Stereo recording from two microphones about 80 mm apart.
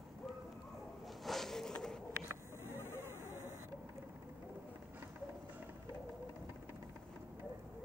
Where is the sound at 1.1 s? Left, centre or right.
Centre.